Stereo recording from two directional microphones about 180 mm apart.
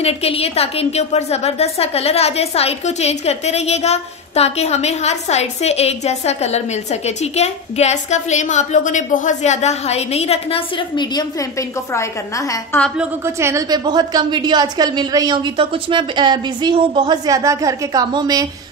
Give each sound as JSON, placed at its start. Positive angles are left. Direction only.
{"t": 0.0, "sound": "a woman's voice", "side_deg": 35}
{"t": 13.2, "sound": "a woman's voice", "side_deg": -15}